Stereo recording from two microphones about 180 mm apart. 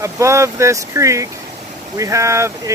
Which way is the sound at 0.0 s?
15° right (ahead or behind).